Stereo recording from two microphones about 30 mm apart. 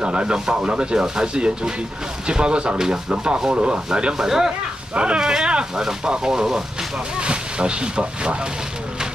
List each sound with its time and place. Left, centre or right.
0.0 s speech: right
3.6 s speech: right
4.2 s speech: centre
4.9 s speech: right
6.0 s speech: right
7.2 s speech: right